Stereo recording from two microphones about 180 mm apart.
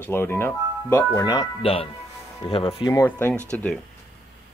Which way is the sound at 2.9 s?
15° left (ahead or behind).